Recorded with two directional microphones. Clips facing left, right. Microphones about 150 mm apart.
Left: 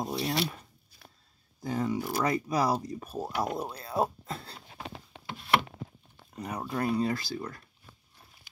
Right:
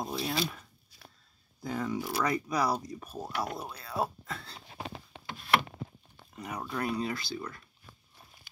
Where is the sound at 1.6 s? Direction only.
30° left (ahead or behind).